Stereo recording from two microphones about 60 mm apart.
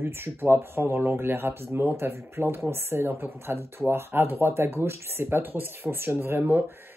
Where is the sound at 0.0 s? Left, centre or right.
Right.